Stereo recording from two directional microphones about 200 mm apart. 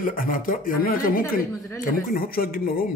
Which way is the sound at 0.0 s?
45° left (ahead or behind).